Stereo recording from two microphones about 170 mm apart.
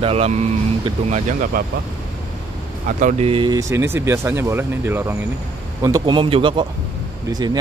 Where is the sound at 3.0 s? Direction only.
40° right (ahead or behind).